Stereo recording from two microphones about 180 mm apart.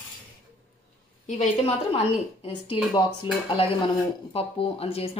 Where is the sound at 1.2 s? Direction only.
35° left (ahead or behind).